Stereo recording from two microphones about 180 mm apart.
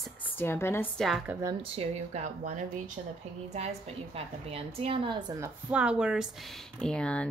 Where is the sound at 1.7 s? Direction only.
40° right (ahead or behind).